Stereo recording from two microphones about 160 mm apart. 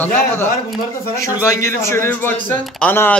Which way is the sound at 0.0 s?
10° left (ahead or behind).